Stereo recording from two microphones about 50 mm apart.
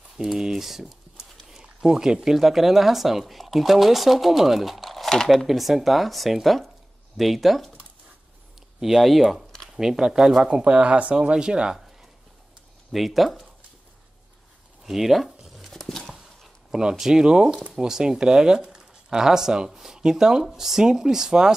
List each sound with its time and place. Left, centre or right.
0.2 s speech: centre
5.5 s speech: centre
8.7 s speech: centre
12.9 s speech: centre
14.9 s a sound: centre
15.7 s a sound: centre
17.0 s speech: centre